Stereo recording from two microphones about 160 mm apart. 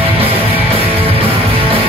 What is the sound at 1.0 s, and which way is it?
Music, 35° right (ahead or behind).